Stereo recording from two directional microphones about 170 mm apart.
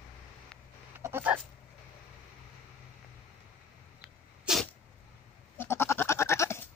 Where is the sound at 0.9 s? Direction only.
15° right (ahead or behind).